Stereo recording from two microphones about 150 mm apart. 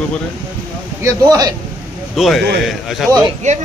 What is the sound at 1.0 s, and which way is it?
Speech, 25° right (ahead or behind).